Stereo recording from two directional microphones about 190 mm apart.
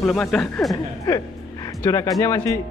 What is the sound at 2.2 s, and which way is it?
Speech, 15° left (ahead or behind).